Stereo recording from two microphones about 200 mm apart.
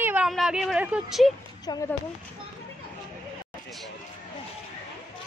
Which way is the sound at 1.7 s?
20° left (ahead or behind).